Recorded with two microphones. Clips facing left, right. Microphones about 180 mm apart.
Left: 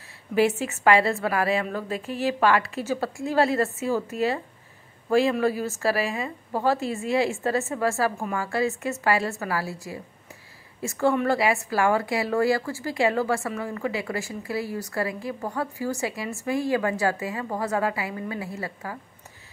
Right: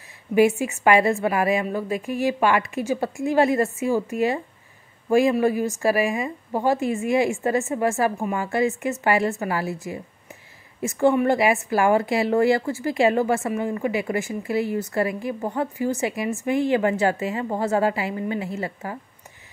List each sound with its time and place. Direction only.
0.3 s a woman's voice: 15° right (ahead or behind)